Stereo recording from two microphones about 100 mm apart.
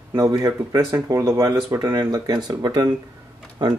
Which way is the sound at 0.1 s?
35° right (ahead or behind).